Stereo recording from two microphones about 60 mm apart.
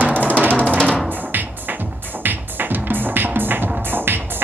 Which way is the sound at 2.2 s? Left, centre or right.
Right.